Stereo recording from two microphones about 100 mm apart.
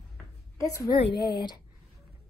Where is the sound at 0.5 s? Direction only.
35° left (ahead or behind).